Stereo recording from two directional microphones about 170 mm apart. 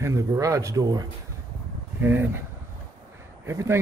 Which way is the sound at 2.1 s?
15° right (ahead or behind).